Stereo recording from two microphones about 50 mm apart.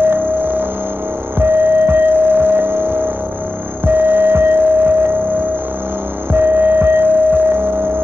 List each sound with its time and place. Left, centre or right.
0.0 s music: right
6.3 s music: right